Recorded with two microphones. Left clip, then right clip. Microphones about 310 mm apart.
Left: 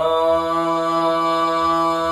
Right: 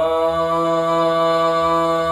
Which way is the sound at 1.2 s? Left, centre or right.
Centre.